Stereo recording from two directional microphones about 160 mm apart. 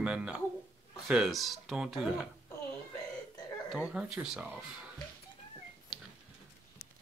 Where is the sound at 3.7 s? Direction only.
5° right (ahead or behind).